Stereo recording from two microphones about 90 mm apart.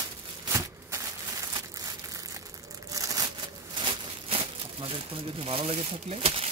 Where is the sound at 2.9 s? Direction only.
40° right (ahead or behind).